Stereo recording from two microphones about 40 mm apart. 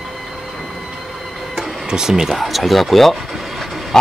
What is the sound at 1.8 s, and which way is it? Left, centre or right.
Speech, centre.